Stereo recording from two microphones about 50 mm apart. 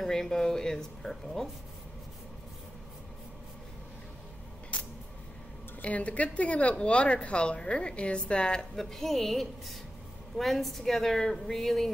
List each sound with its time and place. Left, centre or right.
0.0 s a woman's voice: centre
5.8 s speech: left
8.7 s a woman's voice: centre